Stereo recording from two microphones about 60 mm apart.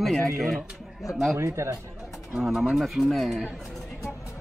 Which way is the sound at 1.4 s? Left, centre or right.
Right.